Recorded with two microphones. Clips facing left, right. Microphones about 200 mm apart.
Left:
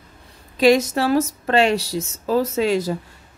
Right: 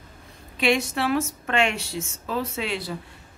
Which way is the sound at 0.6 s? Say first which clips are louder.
Left 8 dB; 40° left (ahead or behind).